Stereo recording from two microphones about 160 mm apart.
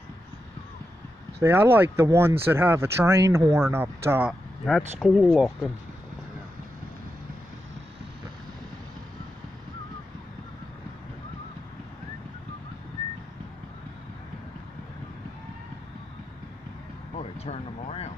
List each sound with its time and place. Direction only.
1.4 s speech: 15° right (ahead or behind); by 5.7 s centre (ahead or behind)
17.2 s vehicle: 40° left (ahead or behind)